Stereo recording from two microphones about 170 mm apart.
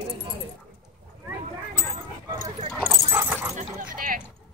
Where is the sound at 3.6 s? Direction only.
55° right (ahead or behind).